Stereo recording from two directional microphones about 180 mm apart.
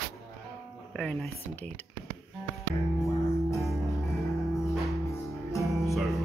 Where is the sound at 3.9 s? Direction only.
Centre (ahead or behind).